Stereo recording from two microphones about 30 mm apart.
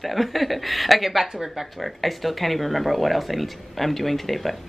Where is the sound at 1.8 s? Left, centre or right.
Centre.